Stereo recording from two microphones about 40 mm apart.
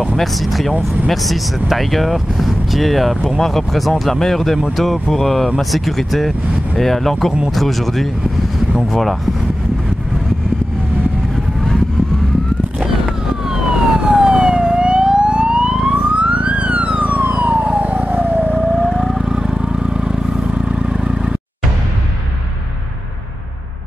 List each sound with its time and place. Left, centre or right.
0.2 s speech: centre
13.9 s emergency vehicle: right
16.2 s police car: right
17.3 s emergency vehicle: right
18.9 s vehicle: centre
19.4 s vehicle: centre